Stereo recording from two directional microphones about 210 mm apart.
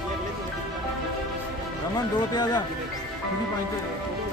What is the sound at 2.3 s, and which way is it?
Speech, 20° left (ahead or behind).